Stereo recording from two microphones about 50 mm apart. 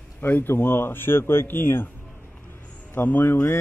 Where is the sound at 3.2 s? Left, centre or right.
Left.